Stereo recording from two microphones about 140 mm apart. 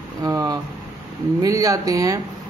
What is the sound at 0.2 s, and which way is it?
Speech, 25° right (ahead or behind).